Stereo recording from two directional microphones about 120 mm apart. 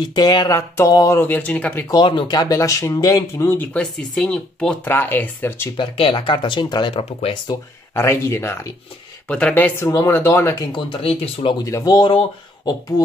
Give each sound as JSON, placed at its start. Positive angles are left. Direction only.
{"t": 0.1, "sound": "speech", "side_deg": 35}
{"t": 1.9, "sound": "speech", "side_deg": 40}
{"t": 5.8, "sound": "speech", "side_deg": 45}
{"t": 7.9, "sound": "speech", "side_deg": 20}
{"t": 10.7, "sound": "speech", "side_deg": 50}
{"t": 11.6, "sound": "speech", "side_deg": 30}
{"t": 12.1, "sound": "speech", "side_deg": 45}